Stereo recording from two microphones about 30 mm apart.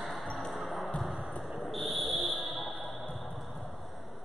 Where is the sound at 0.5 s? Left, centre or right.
Centre.